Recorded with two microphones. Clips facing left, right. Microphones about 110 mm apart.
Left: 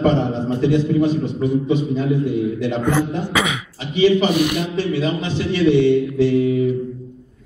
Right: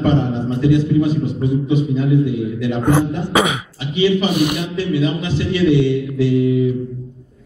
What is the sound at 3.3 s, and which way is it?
Speech, 40° right (ahead or behind).